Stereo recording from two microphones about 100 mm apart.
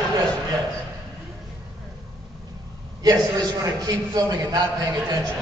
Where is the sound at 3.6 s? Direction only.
40° right (ahead or behind).